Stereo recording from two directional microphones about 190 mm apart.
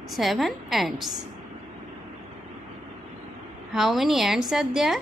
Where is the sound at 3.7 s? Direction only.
Centre (ahead or behind).